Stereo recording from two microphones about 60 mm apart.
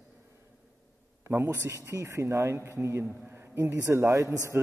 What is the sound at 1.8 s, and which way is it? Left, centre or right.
Speech, right.